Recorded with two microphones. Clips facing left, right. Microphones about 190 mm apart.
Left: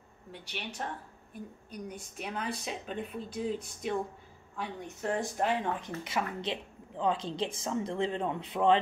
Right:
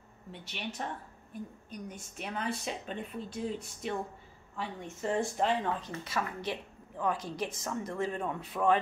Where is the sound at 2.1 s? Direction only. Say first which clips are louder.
Right 1 dB; centre (ahead or behind).